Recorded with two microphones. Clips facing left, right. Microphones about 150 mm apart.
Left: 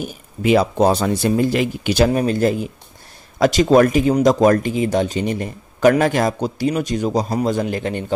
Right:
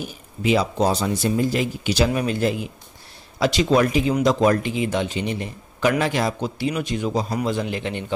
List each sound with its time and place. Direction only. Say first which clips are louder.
0.0 s speech: left 4 dB; 55° left (ahead or behind)